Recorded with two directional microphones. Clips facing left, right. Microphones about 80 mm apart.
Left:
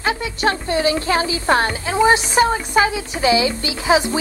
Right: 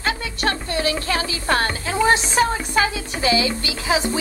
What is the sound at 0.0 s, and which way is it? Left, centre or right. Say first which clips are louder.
Speech: left 4 dB; centre.